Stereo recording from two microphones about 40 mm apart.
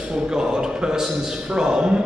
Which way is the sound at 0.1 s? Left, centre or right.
Centre.